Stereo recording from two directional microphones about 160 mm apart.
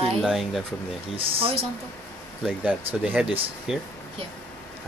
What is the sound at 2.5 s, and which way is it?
Speech, 5° right (ahead or behind).